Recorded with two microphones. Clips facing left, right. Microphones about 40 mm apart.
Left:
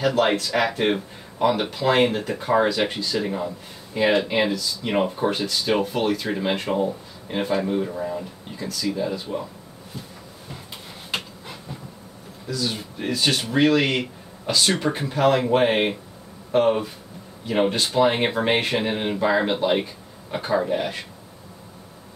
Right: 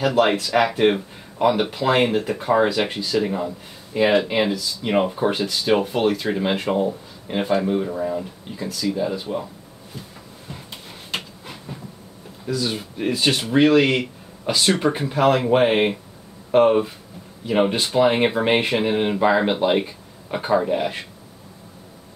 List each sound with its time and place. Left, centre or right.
0.0 s speech: centre
12.4 s speech: centre